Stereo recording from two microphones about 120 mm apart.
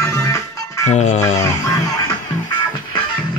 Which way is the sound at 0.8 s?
70° left (ahead or behind).